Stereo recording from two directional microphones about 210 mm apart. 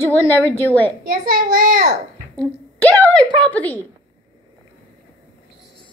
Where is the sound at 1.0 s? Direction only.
40° right (ahead or behind).